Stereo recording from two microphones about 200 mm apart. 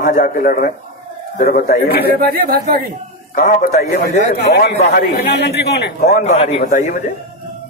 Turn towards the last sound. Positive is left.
turn(degrees=40)  # may be behind; listen again after turning